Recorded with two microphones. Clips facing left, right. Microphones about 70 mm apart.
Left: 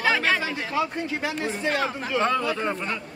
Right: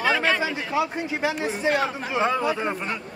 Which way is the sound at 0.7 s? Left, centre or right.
Centre.